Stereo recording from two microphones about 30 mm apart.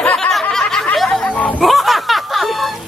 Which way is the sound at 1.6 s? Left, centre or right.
Centre.